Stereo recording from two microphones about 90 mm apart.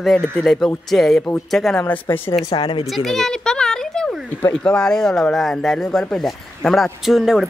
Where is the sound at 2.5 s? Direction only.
70° left (ahead or behind).